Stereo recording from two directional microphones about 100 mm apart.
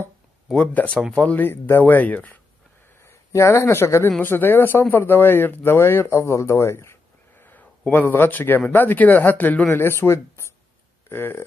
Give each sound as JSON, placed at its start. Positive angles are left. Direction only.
{"t": 0.5, "sound": "speech", "side_deg": 10}
{"t": 3.0, "sound": "speech", "side_deg": 30}